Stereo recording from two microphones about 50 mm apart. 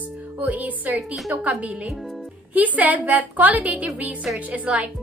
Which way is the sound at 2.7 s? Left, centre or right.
Right.